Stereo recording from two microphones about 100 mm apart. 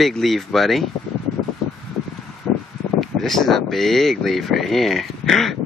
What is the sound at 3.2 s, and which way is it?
Speech, centre (ahead or behind).